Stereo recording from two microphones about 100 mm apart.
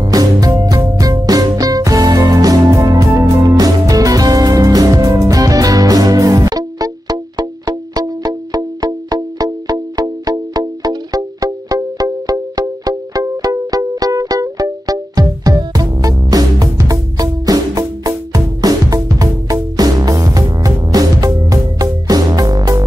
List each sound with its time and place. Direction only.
0.0 s music: 40° right (ahead or behind)